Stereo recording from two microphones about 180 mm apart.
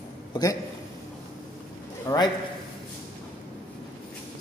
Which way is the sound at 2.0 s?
20° left (ahead or behind).